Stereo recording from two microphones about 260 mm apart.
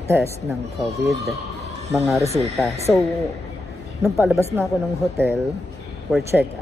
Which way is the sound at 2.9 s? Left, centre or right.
Centre.